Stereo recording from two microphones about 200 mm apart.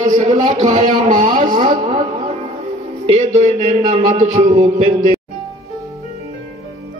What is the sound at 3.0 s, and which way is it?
A man's voice, 35° right (ahead or behind).